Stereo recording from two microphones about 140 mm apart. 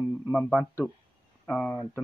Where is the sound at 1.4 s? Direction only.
10° left (ahead or behind).